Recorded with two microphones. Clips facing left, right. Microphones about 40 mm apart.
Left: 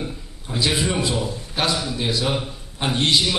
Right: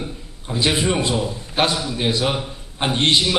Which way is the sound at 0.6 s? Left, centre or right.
Right.